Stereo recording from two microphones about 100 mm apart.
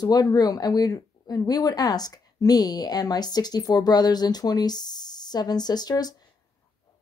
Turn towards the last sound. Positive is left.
turn(degrees=40)  # may be behind; listen again after turning